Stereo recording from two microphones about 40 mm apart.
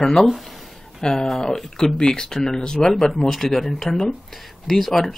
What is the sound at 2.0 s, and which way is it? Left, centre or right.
Speech, centre.